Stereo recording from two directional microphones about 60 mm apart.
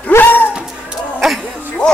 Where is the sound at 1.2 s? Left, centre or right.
Centre.